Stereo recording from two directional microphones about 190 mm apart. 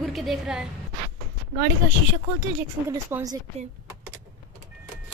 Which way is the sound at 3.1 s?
15° right (ahead or behind).